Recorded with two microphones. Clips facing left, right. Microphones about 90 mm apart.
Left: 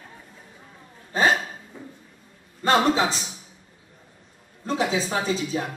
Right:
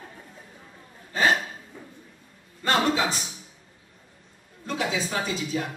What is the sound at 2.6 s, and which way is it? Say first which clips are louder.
Speech: left 4 dB; 30° left (ahead or behind).